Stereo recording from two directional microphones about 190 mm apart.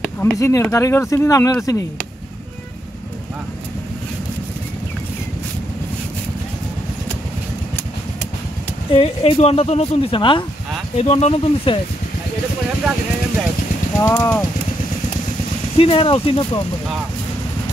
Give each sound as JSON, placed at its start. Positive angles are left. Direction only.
{"t": 0.0, "sound": "a sound", "side_deg": 5}
{"t": 0.4, "sound": "speech", "side_deg": 15}
{"t": 8.9, "sound": "a woman's voice", "side_deg": 30}
{"t": 13.9, "sound": "speech", "side_deg": 15}
{"t": 15.8, "sound": "speech", "side_deg": 30}